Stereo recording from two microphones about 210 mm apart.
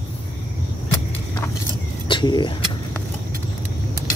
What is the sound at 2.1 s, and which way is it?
Speech, 20° left (ahead or behind).